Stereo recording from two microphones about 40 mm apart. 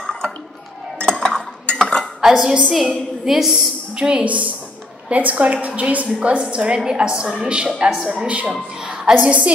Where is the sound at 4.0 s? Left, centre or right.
Right.